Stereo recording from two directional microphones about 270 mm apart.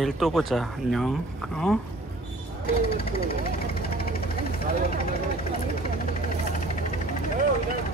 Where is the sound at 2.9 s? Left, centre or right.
Left.